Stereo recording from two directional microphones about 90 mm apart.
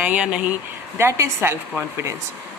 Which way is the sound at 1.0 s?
30° right (ahead or behind).